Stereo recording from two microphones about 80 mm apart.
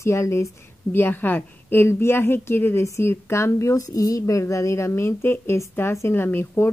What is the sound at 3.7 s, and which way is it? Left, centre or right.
A woman's voice, left.